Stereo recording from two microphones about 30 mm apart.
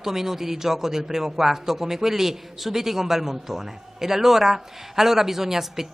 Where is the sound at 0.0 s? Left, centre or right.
Centre.